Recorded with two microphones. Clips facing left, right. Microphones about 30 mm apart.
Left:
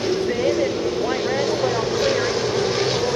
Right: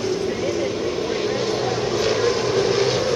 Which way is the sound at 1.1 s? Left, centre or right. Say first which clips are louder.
Left 1 dB; centre.